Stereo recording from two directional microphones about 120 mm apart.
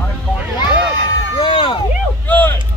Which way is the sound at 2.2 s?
15° left (ahead or behind).